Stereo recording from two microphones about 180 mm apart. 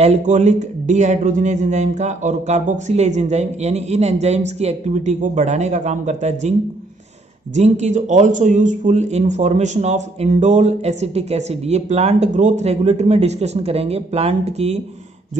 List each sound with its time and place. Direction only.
0.0 s speech: 40° right (ahead or behind)
7.5 s speech: 40° right (ahead or behind)